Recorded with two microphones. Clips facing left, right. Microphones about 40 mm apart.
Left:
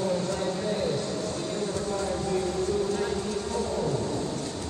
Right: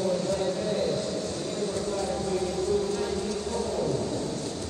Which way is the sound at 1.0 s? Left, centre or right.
Left.